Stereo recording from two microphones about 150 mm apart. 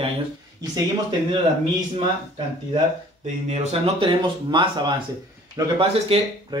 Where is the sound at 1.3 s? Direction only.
35° right (ahead or behind).